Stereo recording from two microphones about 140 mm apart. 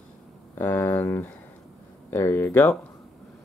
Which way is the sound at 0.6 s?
15° left (ahead or behind).